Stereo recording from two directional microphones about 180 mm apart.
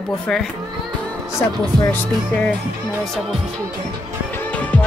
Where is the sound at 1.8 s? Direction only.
10° left (ahead or behind).